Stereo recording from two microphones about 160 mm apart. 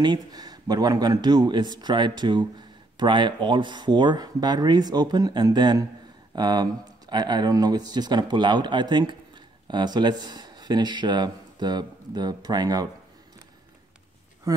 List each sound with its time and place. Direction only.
0.0 s speech: 25° right (ahead or behind)